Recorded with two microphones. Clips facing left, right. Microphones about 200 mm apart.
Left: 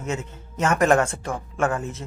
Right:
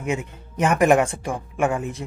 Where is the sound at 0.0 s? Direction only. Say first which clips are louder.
Right 3 dB; 15° right (ahead or behind).